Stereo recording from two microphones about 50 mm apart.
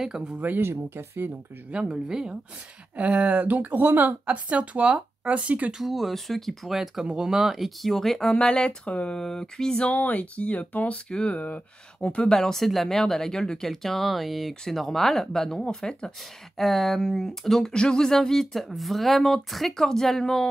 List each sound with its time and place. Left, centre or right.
0.0 s speech: centre
0.6 s speech: right
1.7 s speech: centre
3.0 s a woman's voice: right
4.5 s speech: right
5.7 s speech: centre
8.4 s speech: centre
9.2 s speech: centre
9.8 s speech: left
11.1 s speech: centre
11.3 s speech: left
12.3 s speech: centre